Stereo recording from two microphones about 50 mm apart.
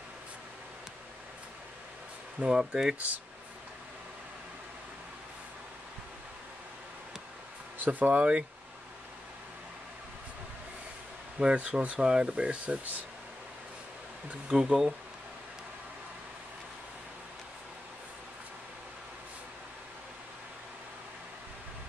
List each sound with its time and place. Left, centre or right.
2.4 s speech: centre
7.8 s speech: right
11.4 s speech: right
14.5 s speech: centre